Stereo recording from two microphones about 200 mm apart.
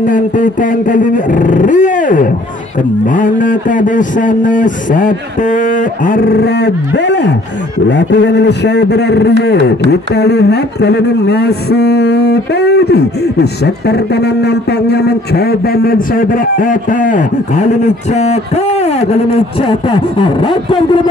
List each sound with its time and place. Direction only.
0.0 s a man's voice: 40° left (ahead or behind)
6.0 s a sound: 45° left (ahead or behind)
7.9 s a man's voice: 60° left (ahead or behind); by 18.4 s 35° left (ahead or behind)
19.7 s speech: 25° left (ahead or behind)